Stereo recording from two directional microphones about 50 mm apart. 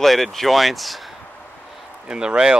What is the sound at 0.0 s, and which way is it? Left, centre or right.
Speech, centre.